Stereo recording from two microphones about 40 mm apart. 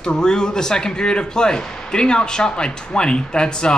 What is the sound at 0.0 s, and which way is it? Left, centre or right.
Speech, centre.